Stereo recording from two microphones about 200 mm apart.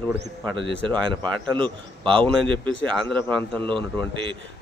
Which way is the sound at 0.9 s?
25° right (ahead or behind).